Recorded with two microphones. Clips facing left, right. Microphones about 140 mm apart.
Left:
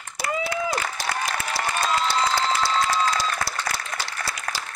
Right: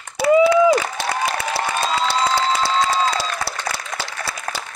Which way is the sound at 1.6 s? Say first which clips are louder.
Right 2 dB; 80° right.